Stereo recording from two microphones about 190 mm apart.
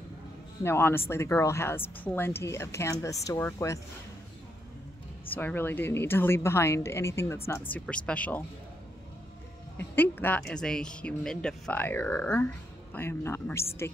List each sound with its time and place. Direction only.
0.7 s speech: 10° left (ahead or behind)
5.3 s speech: 10° left (ahead or behind)
9.8 s speech: 10° left (ahead or behind)